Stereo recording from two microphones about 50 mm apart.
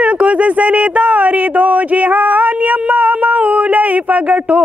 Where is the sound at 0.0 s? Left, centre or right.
Right.